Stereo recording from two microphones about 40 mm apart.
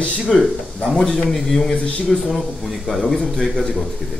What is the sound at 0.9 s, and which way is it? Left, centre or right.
Speech, centre.